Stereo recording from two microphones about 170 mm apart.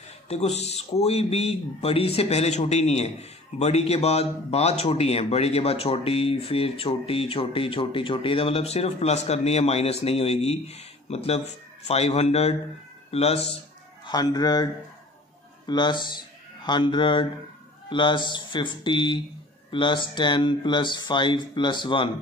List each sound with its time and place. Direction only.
0.3 s speech: 40° left (ahead or behind)
14.0 s speech: 25° left (ahead or behind)